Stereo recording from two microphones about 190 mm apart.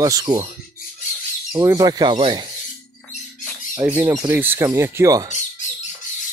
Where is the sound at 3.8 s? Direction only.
10° right (ahead or behind).